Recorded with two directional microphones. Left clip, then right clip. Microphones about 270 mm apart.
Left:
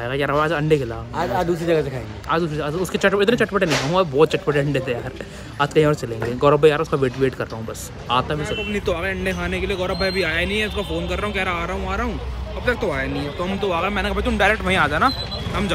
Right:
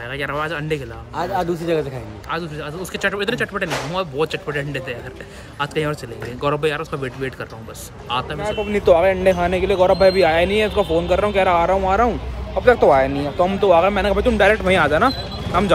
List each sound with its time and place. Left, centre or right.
0.0 s speech: centre
1.1 s speech: centre
2.2 s speech: centre